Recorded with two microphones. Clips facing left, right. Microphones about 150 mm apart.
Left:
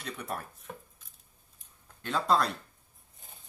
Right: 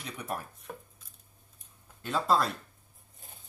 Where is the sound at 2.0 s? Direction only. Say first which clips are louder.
Even; 5° right (ahead or behind).